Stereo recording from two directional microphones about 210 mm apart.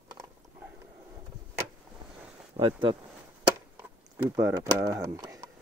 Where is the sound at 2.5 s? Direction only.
25° right (ahead or behind).